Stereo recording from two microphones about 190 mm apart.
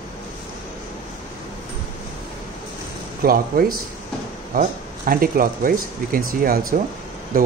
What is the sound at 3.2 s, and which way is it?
Speech, 50° right (ahead or behind).